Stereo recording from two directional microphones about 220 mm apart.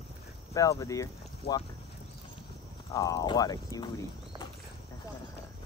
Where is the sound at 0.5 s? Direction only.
15° left (ahead or behind).